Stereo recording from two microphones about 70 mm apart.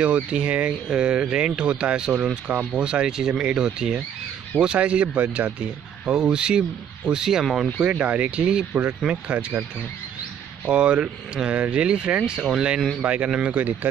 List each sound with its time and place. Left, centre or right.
0.0 s speech: centre
6.0 s speech: centre
10.7 s speech: centre